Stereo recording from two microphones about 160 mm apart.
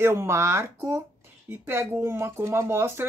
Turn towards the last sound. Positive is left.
turn(degrees=-15)  # may be behind; listen again after turning